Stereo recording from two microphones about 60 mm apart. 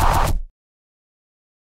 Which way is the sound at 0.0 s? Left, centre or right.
Centre.